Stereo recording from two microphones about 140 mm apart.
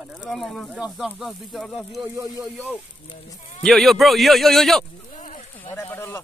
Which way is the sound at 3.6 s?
Centre (ahead or behind).